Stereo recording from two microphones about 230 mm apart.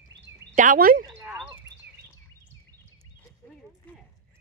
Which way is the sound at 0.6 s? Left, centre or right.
Right.